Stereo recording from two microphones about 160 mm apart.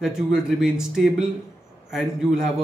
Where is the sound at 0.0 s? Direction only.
5° right (ahead or behind).